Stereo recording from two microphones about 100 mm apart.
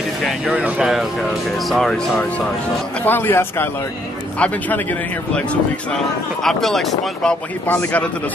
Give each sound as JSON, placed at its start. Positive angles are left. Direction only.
{"t": 0.5, "sound": "speech", "side_deg": -15}
{"t": 1.7, "sound": "speech", "side_deg": 5}
{"t": 3.1, "sound": "a man's voice", "side_deg": 20}
{"t": 7.6, "sound": "a man's voice", "side_deg": 20}